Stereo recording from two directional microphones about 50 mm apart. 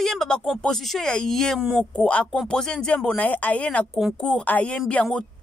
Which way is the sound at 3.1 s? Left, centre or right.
Left.